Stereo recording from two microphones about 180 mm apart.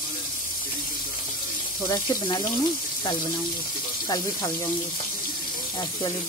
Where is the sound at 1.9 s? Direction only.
25° left (ahead or behind).